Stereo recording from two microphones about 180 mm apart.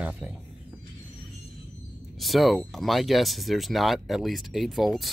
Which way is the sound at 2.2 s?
Centre (ahead or behind).